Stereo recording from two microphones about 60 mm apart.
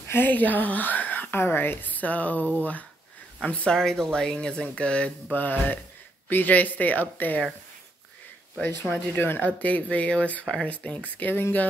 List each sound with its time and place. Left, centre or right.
0.1 s speech: left
3.7 s speech: centre
5.3 s speech: left
8.9 s speech: left
10.4 s speech: centre
10.7 s speech: left